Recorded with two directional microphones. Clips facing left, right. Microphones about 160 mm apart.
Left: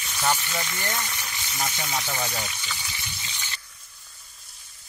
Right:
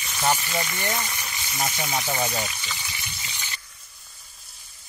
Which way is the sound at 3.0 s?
10° right (ahead or behind).